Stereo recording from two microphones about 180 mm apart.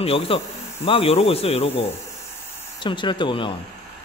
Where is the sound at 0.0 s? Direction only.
30° left (ahead or behind).